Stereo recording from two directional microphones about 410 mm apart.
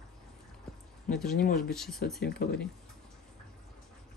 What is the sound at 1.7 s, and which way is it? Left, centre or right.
Speech, centre.